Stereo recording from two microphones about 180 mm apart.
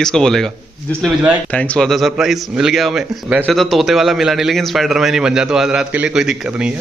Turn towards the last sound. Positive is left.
turn(degrees=-5)  # may be behind; listen again after turning